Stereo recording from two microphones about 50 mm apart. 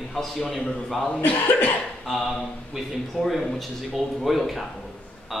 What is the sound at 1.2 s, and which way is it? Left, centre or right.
Speech, left.